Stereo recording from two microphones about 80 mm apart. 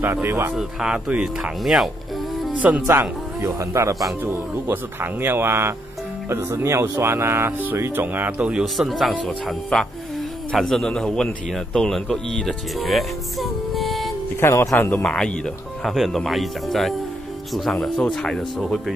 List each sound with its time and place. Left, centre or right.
0.0 s speech: right
0.6 s speech: centre
2.5 s speech: centre
2.9 s speech: right
4.2 s speech: right
8.7 s speech: centre
14.4 s speech: left
15.0 s speech: centre
18.1 s speech: centre